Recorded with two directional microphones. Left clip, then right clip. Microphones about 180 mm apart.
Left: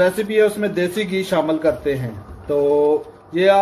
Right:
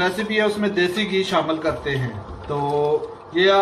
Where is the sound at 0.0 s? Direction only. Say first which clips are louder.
Left 5 dB; 55° left (ahead or behind).